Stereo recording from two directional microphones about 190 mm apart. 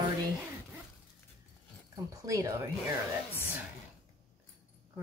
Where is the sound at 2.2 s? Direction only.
15° right (ahead or behind).